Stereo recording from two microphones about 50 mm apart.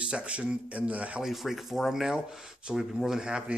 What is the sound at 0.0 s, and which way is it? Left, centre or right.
Speech, right.